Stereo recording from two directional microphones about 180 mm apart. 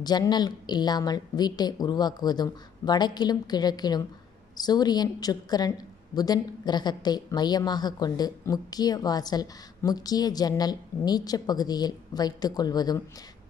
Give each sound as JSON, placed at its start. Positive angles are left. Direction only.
{"t": 0.0, "sound": "a woman's voice", "side_deg": 25}